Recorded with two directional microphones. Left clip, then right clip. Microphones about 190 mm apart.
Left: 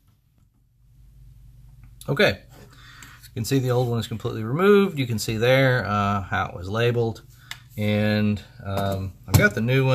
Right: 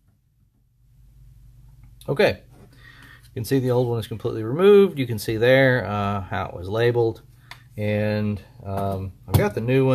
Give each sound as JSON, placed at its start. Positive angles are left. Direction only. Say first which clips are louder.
{"t": 2.0, "sound": "speech", "louder": "right 1 dB", "side_deg": -25}